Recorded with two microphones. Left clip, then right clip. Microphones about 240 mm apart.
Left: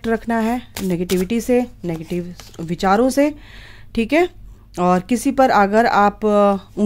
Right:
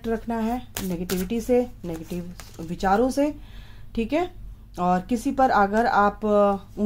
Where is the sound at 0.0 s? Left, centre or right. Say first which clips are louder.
Left 7 dB; left.